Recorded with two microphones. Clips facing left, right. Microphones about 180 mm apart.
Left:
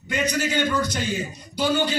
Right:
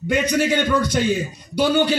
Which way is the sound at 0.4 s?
60° right (ahead or behind).